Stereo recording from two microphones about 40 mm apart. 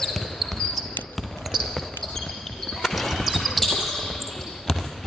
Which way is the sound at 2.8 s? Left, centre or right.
Centre.